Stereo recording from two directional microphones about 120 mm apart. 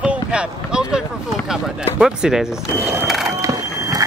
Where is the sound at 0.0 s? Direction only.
10° right (ahead or behind).